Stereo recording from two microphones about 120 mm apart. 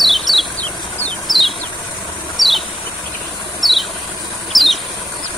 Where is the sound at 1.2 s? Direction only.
Centre (ahead or behind).